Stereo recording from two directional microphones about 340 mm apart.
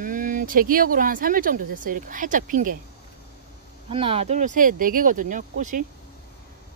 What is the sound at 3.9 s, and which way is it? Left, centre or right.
Speech, centre.